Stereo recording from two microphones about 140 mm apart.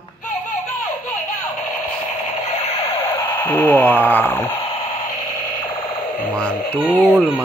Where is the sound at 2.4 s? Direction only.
55° left (ahead or behind); by 3.4 s 35° left (ahead or behind).